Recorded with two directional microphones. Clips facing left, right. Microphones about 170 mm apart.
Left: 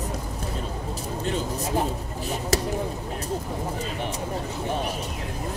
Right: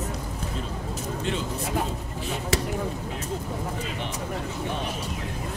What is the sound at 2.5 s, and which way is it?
Speech, 40° left (ahead or behind).